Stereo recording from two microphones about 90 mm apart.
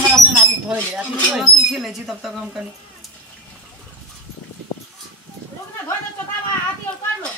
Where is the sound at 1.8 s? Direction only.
5° right (ahead or behind).